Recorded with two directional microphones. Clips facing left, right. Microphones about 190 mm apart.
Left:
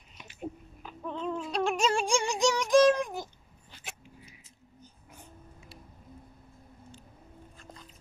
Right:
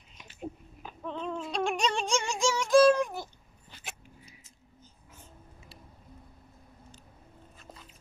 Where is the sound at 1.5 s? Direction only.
5° left (ahead or behind).